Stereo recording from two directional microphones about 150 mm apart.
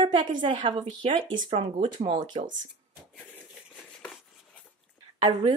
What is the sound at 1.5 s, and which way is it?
Speech, 45° right (ahead or behind).